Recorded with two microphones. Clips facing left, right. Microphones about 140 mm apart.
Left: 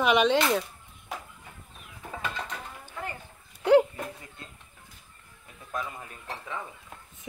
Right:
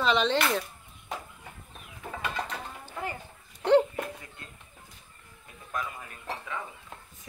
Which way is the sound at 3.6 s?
10° left (ahead or behind).